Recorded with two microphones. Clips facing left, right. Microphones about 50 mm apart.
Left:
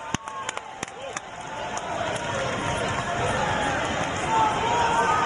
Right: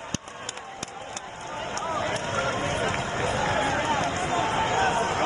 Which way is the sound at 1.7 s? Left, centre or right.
Left.